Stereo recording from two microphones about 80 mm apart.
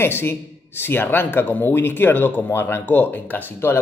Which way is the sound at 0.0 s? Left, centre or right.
Left.